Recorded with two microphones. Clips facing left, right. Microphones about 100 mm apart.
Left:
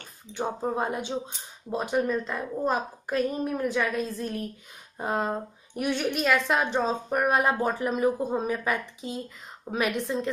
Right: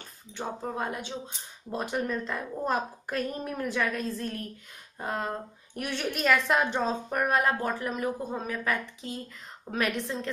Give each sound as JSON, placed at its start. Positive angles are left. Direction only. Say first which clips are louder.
{"t": 0.3, "sound": "a woman's voice", "louder": "left 5 dB", "side_deg": 15}
{"t": 0.7, "sound": "speech", "louder": "left 5 dB", "side_deg": 25}
{"t": 1.7, "sound": "a woman's voice", "louder": "left 4 dB", "side_deg": 5}
{"t": 5.8, "sound": "a woman's voice", "louder": "left 4 dB", "side_deg": 5}